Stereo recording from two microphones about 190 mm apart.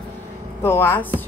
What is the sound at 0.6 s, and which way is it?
Speech, 10° left (ahead or behind).